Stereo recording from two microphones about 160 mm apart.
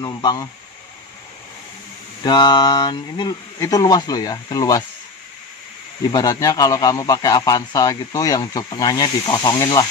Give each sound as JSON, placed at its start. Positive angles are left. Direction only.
{"t": 0.0, "sound": "a man's voice", "side_deg": 25}
{"t": 2.2, "sound": "a man's voice", "side_deg": 25}
{"t": 6.1, "sound": "a man's voice", "side_deg": 20}